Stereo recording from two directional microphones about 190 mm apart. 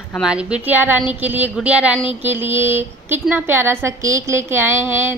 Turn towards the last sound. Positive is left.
turn(degrees=-10)  # may be behind; listen again after turning